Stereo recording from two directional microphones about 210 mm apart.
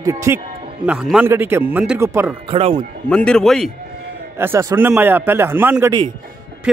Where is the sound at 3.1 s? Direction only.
5° left (ahead or behind).